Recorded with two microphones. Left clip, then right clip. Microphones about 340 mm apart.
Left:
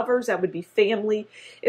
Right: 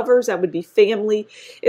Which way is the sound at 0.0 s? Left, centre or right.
Right.